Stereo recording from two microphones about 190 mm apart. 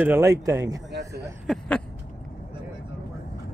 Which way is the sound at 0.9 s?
65° right (ahead or behind).